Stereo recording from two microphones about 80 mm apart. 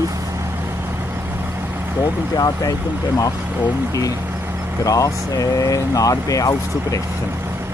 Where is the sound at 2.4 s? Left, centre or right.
Left.